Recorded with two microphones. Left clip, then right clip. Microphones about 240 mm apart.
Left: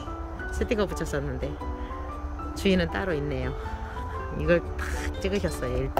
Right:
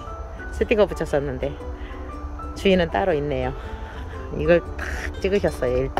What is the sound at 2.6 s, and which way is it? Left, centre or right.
Speech, centre.